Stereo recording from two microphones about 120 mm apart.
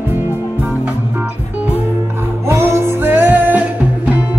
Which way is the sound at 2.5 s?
20° right (ahead or behind).